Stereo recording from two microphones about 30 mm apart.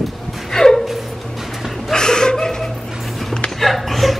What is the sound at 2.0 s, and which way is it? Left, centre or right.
Chuckle, left.